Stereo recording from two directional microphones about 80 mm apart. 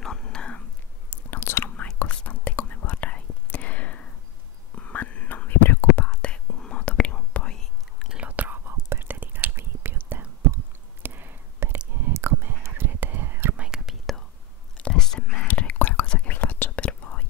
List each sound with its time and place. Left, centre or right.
0.0 s whispering: centre
1.1 s chewing: left
2.0 s whispering: centre
6.0 s whispering: centre
8.1 s whispering: centre
8.6 s whispering: right
11.0 s a sound: right
12.1 s whispering: right
13.6 s whispering: centre
14.8 s whispering: centre